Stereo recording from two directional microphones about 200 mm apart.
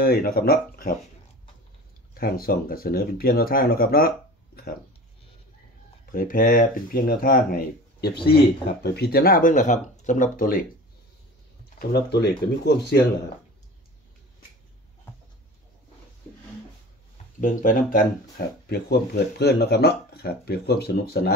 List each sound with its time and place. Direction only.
0.0 s speech: 50° left (ahead or behind)
2.1 s speech: 50° left (ahead or behind)
6.0 s speech: 45° left (ahead or behind)
11.8 s speech: 55° left (ahead or behind)
17.4 s speech: 40° left (ahead or behind)
18.7 s speech: 55° left (ahead or behind)